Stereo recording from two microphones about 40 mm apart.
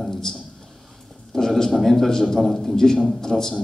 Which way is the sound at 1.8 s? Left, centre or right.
Centre.